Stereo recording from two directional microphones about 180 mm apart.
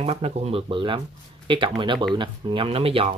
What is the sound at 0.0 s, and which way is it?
Speech, 35° right (ahead or behind).